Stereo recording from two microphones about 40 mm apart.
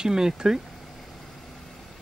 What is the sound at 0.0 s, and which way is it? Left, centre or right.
Speech, centre.